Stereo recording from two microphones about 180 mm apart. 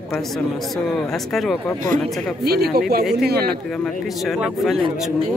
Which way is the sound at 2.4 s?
60° right (ahead or behind).